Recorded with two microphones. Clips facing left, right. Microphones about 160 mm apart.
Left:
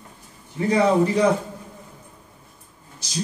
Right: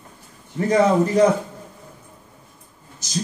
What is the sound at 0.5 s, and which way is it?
Speech, 45° right (ahead or behind).